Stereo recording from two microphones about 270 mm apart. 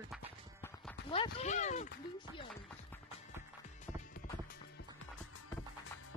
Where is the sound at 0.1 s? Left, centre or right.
Centre.